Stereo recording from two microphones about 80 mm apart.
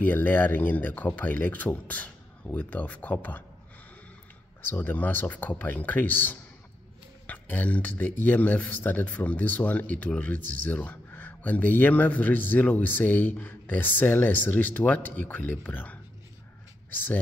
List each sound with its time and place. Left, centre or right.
0.0 s speech: left
4.6 s speech: left